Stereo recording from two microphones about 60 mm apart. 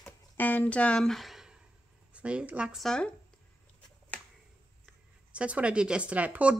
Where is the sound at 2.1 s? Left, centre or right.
Right.